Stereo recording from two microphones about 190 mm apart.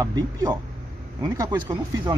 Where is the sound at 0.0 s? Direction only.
20° right (ahead or behind).